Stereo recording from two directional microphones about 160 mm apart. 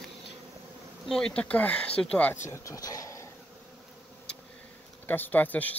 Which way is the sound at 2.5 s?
20° left (ahead or behind).